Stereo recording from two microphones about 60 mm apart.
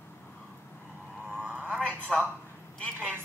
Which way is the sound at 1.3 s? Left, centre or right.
Right.